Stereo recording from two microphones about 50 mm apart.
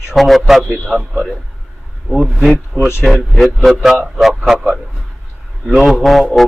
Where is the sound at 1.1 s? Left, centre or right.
Centre.